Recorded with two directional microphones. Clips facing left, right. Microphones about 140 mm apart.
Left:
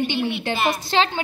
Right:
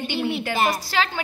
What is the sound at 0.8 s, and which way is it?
Speech, 25° left (ahead or behind).